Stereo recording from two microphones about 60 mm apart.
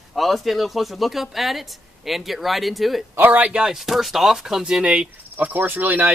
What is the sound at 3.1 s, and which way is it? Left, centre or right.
Speech, right.